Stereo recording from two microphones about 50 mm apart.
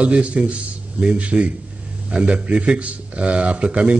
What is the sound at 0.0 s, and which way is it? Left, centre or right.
Speech, right.